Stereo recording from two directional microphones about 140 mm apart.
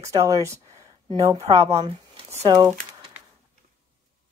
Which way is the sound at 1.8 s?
40° right (ahead or behind).